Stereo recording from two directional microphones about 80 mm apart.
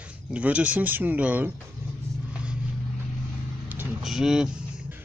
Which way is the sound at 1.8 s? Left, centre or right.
Right.